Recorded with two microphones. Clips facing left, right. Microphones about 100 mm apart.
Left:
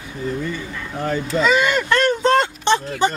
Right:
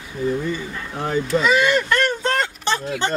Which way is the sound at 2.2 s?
20° left (ahead or behind).